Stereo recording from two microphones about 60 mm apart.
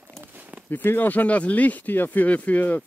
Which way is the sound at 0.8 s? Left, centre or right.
Left.